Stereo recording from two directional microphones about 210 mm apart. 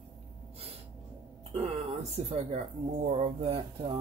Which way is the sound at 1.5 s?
30° right (ahead or behind).